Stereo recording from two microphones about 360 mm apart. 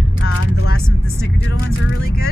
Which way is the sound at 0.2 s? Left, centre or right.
Left.